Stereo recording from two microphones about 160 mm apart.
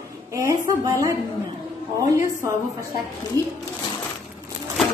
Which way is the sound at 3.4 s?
25° right (ahead or behind).